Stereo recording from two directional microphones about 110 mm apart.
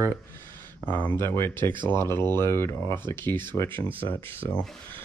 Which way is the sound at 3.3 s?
45° right (ahead or behind).